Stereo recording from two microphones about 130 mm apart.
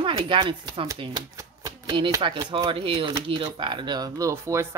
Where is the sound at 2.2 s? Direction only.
40° right (ahead or behind).